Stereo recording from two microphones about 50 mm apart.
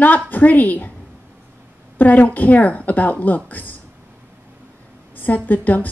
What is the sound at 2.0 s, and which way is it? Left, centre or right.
A woman's voice, left.